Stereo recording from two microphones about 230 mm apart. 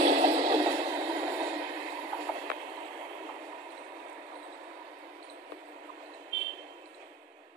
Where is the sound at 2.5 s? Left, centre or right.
Right.